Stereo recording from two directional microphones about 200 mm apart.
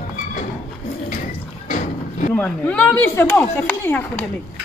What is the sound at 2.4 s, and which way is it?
Speech, 5° left (ahead or behind).